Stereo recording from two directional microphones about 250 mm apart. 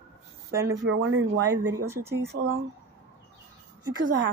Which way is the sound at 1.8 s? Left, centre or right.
Centre.